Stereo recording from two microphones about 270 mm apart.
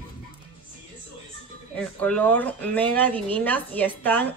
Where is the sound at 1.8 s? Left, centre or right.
Centre.